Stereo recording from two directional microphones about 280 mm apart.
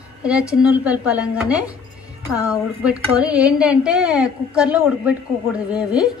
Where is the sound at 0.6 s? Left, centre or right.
Centre.